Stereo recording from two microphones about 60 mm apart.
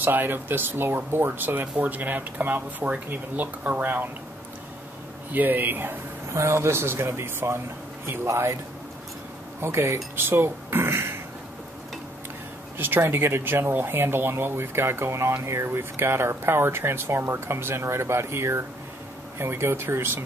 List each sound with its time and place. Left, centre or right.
0.0 s speech: right
5.3 s speech: right
6.3 s speech: right
9.6 s speech: right
12.7 s speech: right